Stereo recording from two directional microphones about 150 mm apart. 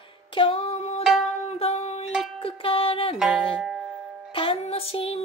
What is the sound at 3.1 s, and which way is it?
Music, 5° right (ahead or behind).